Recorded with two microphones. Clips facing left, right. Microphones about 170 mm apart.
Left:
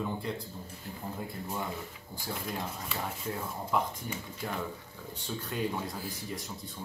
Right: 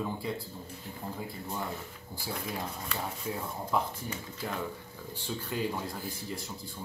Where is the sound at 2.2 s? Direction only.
Centre (ahead or behind).